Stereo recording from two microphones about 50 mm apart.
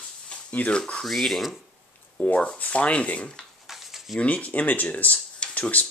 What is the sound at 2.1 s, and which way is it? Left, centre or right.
Speech, left.